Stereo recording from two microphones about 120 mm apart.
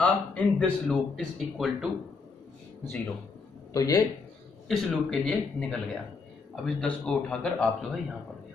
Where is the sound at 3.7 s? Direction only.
30° left (ahead or behind).